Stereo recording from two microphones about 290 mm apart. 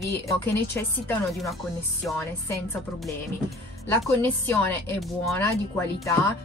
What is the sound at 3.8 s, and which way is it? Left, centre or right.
Speech, centre.